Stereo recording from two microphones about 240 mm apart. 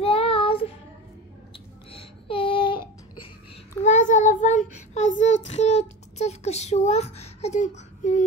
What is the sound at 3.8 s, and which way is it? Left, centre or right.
Child singing, left.